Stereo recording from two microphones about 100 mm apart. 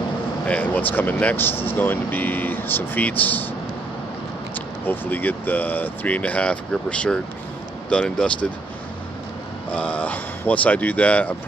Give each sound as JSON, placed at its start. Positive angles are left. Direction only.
{"t": 0.5, "sound": "speech", "side_deg": 15}
{"t": 4.6, "sound": "speech", "side_deg": 20}
{"t": 9.7, "sound": "speech", "side_deg": 15}